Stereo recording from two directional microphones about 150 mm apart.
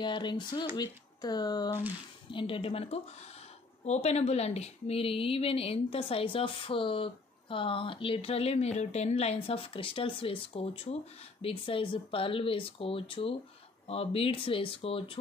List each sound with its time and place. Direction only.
0.0 s speech: 30° left (ahead or behind)